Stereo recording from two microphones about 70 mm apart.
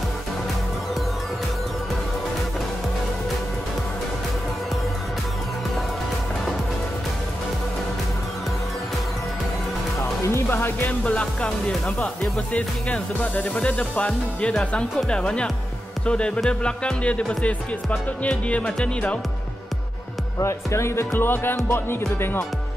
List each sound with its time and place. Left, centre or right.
9.9 s music: left
10.5 s music: left
11.1 s speech: centre
12.0 s music: centre
13.6 s speech: centre
18.5 s speech: centre
20.3 s speech: left